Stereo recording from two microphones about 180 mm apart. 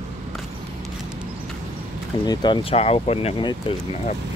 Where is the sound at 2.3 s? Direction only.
25° left (ahead or behind).